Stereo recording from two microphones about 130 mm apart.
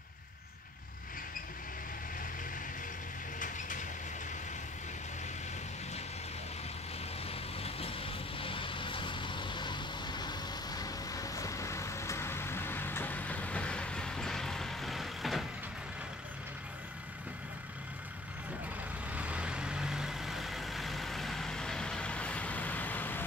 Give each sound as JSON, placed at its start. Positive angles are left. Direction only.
{"t": 3.3, "sound": "a sound", "side_deg": 90}
{"t": 7.2, "sound": "vehicle", "side_deg": 50}
{"t": 19.1, "sound": "vehicle", "side_deg": -10}